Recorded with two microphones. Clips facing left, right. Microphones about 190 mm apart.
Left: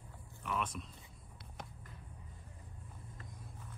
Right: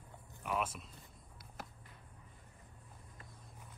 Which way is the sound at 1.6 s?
5° right (ahead or behind).